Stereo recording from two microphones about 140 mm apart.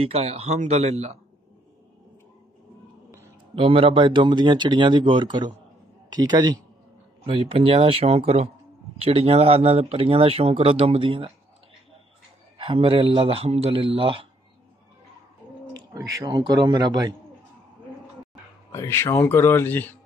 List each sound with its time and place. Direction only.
0.0 s speech: 45° right (ahead or behind)
3.5 s speech: 40° right (ahead or behind)
7.2 s speech: 40° right (ahead or behind)
12.5 s speech: 40° right (ahead or behind)
16.3 s speech: 30° right (ahead or behind)
18.7 s speech: 20° left (ahead or behind)